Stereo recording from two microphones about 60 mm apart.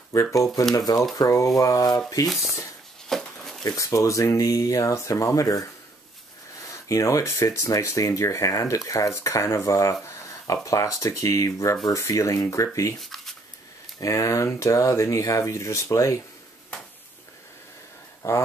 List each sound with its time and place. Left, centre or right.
0.1 s speech: left
0.7 s speech: left
1.1 s speech: left
2.2 s speech: centre
3.1 s a sound: centre
3.6 s speech: left
6.7 s a sound: left
7.6 s speech: left
9.1 s speech: left
13.0 s a sound: centre
13.9 s speech: left
18.2 s a sound: left